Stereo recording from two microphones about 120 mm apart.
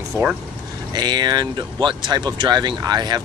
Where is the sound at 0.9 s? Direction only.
35° right (ahead or behind).